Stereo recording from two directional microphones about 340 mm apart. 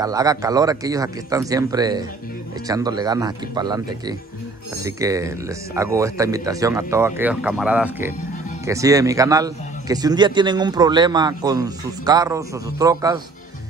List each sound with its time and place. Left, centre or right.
0.0 s a man's voice: centre
4.8 s a man's voice: centre